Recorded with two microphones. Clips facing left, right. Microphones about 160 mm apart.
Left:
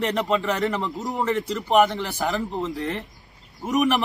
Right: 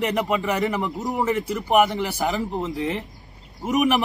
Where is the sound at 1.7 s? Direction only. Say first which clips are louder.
Even; 15° right (ahead or behind).